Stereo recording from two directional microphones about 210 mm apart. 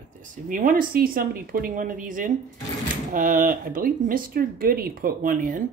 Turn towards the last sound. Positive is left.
turn(degrees=-40)  # may be behind; listen again after turning